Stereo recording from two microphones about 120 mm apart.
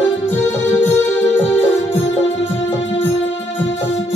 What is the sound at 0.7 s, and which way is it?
Music, 15° left (ahead or behind).